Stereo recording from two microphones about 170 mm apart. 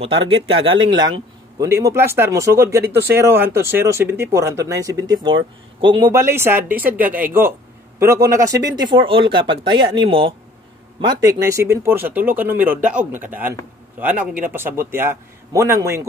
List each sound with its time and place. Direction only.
0.3 s speech: 30° right (ahead or behind)
6.1 s speech: 15° right (ahead or behind)